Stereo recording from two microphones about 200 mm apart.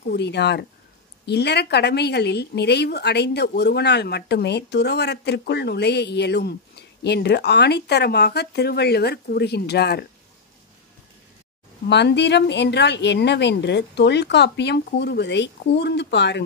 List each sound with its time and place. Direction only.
0.0 s speech: 55° left (ahead or behind)
11.9 s speech: 60° left (ahead or behind)